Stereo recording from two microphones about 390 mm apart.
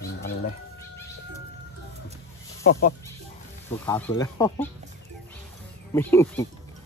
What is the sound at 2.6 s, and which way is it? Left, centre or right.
Speech, left.